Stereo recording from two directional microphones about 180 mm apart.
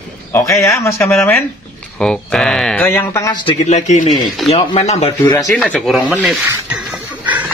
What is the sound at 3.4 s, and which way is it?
Speech, 40° left (ahead or behind).